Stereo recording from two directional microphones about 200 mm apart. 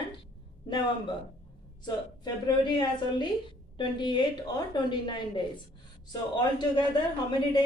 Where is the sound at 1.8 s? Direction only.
20° left (ahead or behind).